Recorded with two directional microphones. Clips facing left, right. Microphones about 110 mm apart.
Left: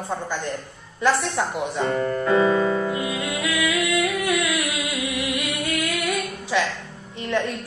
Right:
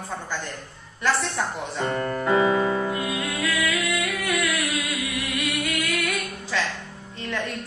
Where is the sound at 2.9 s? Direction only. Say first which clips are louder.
Left 1 dB; 20° left (ahead or behind).